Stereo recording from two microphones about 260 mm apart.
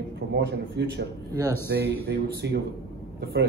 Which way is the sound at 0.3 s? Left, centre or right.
Right.